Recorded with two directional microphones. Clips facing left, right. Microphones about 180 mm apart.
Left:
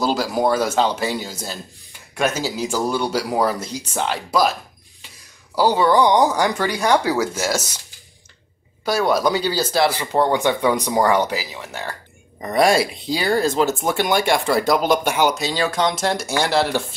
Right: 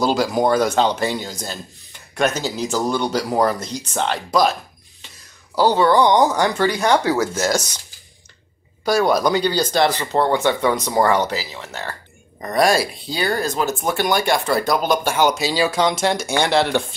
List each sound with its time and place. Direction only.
0.0 s speech: centre (ahead or behind)
5.6 s speech: 10° left (ahead or behind)
8.8 s speech: centre (ahead or behind)
12.5 s speech: 25° left (ahead or behind)
15.3 s speech: 5° right (ahead or behind)